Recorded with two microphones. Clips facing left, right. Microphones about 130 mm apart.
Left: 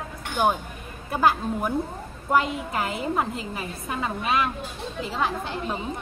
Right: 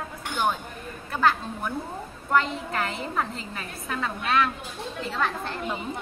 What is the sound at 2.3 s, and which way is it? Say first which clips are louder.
A woman's voice: left 1 dB; 10° left (ahead or behind).